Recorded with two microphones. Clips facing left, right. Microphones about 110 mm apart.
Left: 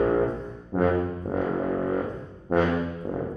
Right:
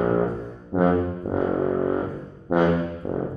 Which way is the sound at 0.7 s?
10° right (ahead or behind).